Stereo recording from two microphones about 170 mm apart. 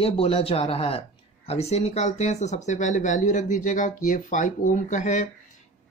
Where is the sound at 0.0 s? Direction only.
35° left (ahead or behind).